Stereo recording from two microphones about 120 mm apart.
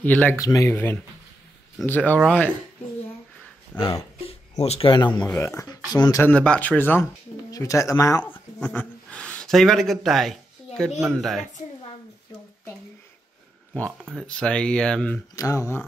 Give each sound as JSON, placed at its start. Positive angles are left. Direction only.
{"t": 0.0, "sound": "speech", "side_deg": 15}
{"t": 0.4, "sound": "speech", "side_deg": 25}
{"t": 1.9, "sound": "speech", "side_deg": 15}
{"t": 3.8, "sound": "a man's voice", "side_deg": 55}
{"t": 6.2, "sound": "speech", "side_deg": 10}
{"t": 7.5, "sound": "speech", "side_deg": 25}
{"t": 8.2, "sound": "speech", "side_deg": 10}
{"t": 14.1, "sound": "speech", "side_deg": 5}
{"t": 15.3, "sound": "speech", "side_deg": 25}